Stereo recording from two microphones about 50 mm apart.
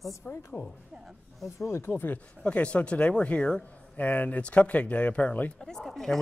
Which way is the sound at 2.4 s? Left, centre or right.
Left.